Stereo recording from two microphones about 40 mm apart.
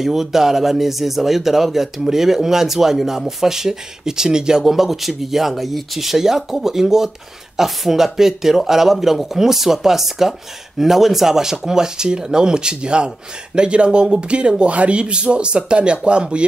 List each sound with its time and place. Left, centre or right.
0.0 s speech: centre; by 16.4 s right